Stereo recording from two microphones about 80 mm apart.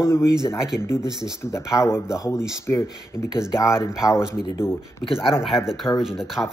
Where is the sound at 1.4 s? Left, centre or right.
Left.